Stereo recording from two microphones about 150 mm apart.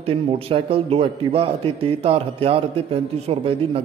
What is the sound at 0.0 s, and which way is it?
A man's voice, 40° right (ahead or behind).